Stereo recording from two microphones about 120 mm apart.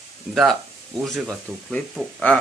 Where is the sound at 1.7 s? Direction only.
10° left (ahead or behind).